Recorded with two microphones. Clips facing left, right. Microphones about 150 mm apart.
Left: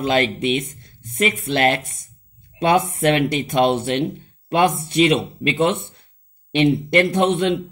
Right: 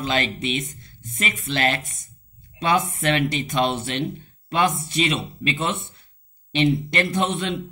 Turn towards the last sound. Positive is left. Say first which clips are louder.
# left 6 dB
turn(degrees=60)  # may be behind; listen again after turning